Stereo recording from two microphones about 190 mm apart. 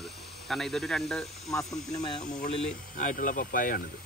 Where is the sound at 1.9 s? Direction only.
20° left (ahead or behind).